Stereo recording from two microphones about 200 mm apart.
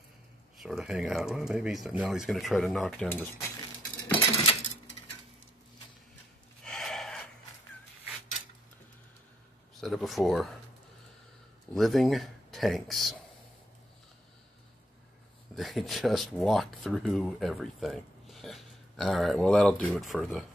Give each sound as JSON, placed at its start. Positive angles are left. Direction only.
{"t": 0.6, "sound": "speech", "side_deg": 0}
{"t": 4.1, "sound": "a sound", "side_deg": 30}
{"t": 6.6, "sound": "a sound", "side_deg": 0}
{"t": 9.8, "sound": "speech", "side_deg": 0}
{"t": 11.7, "sound": "speech", "side_deg": 0}
{"t": 15.5, "sound": "speech", "side_deg": 0}